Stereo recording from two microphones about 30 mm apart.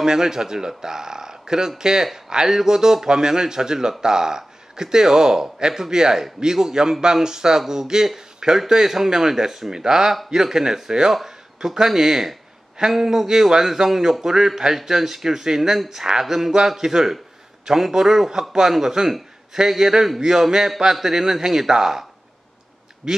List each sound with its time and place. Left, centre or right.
0.0 s a man's voice: centre
23.0 s speech: centre